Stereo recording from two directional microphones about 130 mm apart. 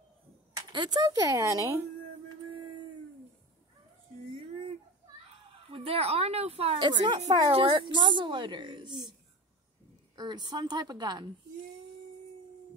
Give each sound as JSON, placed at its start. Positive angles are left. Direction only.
{"t": 0.7, "sound": "a woman's voice", "side_deg": -35}
{"t": 5.7, "sound": "a woman's voice", "side_deg": -50}
{"t": 6.9, "sound": "a woman's voice", "side_deg": -35}
{"t": 7.2, "sound": "a woman's voice", "side_deg": -55}
{"t": 10.1, "sound": "a woman's voice", "side_deg": -35}